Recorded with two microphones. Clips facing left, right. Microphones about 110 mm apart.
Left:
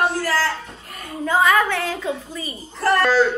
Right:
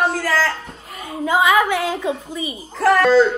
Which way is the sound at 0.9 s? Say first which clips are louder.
Right 2 dB; 5° right (ahead or behind).